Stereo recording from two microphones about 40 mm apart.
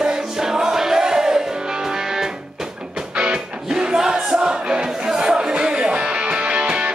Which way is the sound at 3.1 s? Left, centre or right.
Right.